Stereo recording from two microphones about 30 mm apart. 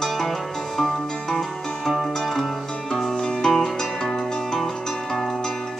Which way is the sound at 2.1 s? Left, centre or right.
Centre.